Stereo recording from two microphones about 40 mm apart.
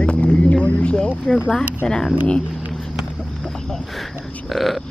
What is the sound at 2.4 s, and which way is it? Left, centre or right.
Speech, right.